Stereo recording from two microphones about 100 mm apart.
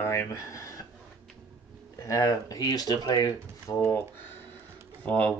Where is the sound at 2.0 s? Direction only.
35° left (ahead or behind).